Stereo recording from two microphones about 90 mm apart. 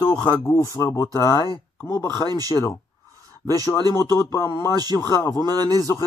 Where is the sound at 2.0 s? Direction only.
45° right (ahead or behind).